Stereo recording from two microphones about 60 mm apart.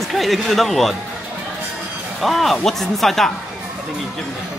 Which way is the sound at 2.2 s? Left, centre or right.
Centre.